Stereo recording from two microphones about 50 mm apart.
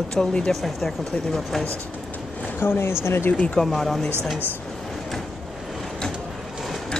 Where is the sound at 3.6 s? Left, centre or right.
Centre.